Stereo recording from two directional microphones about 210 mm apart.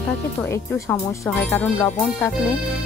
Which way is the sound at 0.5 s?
10° left (ahead or behind).